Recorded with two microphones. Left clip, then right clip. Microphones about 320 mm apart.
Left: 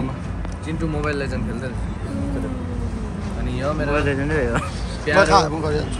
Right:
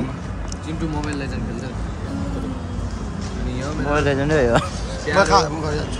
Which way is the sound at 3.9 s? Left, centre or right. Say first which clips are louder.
Right 6 dB; right.